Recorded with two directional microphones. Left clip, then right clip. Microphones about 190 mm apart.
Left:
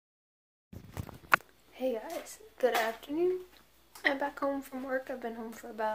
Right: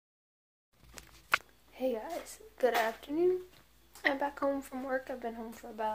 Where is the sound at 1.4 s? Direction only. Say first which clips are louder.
Left 1 dB; 5° right (ahead or behind).